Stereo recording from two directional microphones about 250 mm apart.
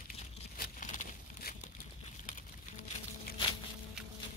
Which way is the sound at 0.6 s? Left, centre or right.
Left.